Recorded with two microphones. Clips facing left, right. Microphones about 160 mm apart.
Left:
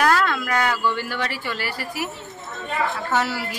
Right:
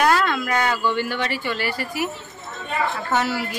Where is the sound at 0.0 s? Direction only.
Centre (ahead or behind).